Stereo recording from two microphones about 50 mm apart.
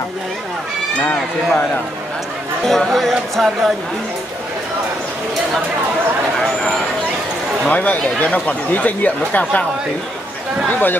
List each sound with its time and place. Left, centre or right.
2.6 s speech: centre
7.7 s speech: left
10.7 s speech: left